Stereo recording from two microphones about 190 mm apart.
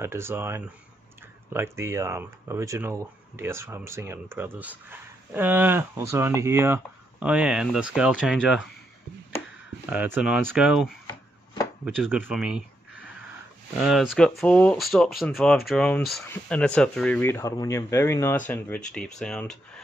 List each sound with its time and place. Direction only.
0.0 s speech: 15° right (ahead or behind)
9.8 s speech: 10° right (ahead or behind)
13.7 s speech: centre (ahead or behind); by 18.4 s 15° left (ahead or behind)
19.1 s speech: 5° left (ahead or behind)